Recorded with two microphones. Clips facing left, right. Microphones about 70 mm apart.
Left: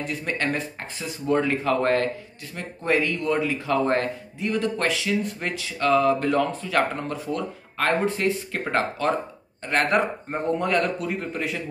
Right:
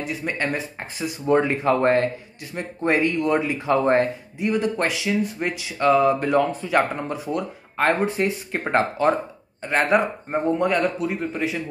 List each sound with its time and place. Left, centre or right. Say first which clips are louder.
0.0 s speech: right 1 dB; centre
9.7 s speech: right 2 dB; centre